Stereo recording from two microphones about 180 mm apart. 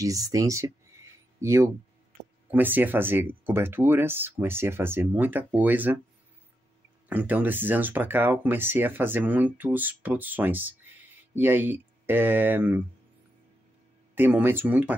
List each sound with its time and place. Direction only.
0.0 s speech: 20° right (ahead or behind)
7.1 s speech: 10° right (ahead or behind)
14.1 s speech: 10° right (ahead or behind)